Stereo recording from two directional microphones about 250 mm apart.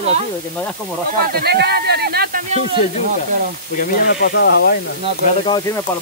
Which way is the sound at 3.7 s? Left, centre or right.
Left.